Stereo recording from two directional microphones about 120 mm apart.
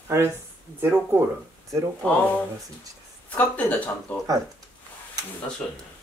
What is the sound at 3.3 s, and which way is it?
Speech, 10° left (ahead or behind).